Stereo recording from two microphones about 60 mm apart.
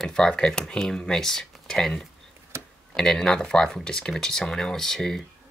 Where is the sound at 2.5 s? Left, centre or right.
Right.